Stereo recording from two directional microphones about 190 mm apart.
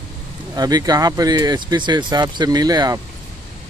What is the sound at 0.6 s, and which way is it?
Speech, 20° right (ahead or behind).